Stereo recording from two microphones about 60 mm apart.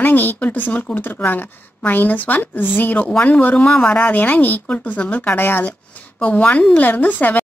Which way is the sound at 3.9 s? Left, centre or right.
Left.